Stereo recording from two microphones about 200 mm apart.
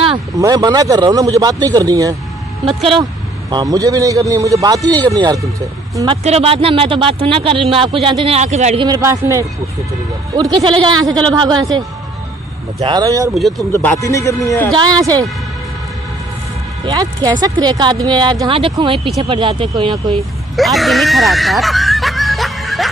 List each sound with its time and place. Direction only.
0.4 s a man's voice: 20° right (ahead or behind)
6.2 s speech: 30° right (ahead or behind)
8.8 s a man's voice: 15° right (ahead or behind)
13.3 s speech: centre (ahead or behind)
13.9 s a man's voice: 15° left (ahead or behind)
14.7 s speech: 20° right (ahead or behind)
16.8 s speech: 20° right (ahead or behind)
20.5 s screaming: centre (ahead or behind)